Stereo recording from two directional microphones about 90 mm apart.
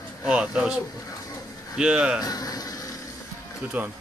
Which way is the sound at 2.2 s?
45° left (ahead or behind).